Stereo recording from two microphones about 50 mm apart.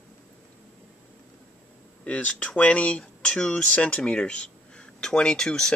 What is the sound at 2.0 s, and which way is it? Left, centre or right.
Speech, left.